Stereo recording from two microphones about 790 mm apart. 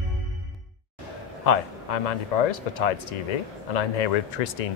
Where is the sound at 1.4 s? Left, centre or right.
Left.